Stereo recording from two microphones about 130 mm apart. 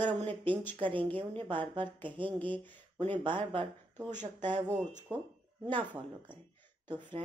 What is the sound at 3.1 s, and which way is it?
Speech, 40° right (ahead or behind).